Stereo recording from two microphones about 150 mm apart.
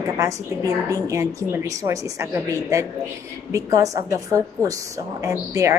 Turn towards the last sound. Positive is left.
turn(degrees=-20)  # may be behind; listen again after turning